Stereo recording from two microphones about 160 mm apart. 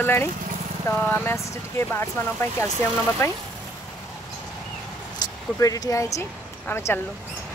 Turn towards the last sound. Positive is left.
turn(degrees=15)  # may be behind; listen again after turning